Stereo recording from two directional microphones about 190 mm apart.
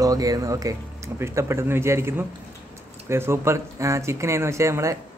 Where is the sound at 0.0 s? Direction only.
20° right (ahead or behind).